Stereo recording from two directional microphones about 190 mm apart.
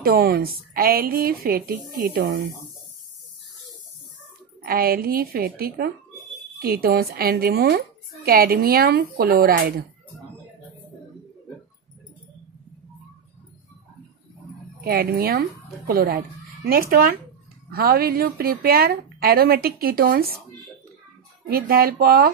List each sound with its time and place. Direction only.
0.0 s a woman's voice: 55° right (ahead or behind)
4.6 s a woman's voice: 50° right (ahead or behind)
14.8 s a woman's voice: 55° right (ahead or behind)
21.5 s a woman's voice: 55° right (ahead or behind)